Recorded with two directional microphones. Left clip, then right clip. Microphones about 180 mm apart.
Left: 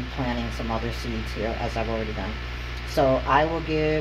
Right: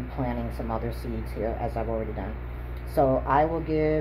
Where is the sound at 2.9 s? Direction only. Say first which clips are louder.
Left 2 dB; 5° left (ahead or behind).